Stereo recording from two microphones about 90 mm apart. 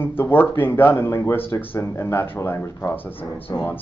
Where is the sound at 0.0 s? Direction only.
25° left (ahead or behind).